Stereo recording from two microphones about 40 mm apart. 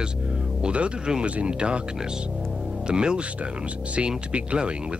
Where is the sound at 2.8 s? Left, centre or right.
Right.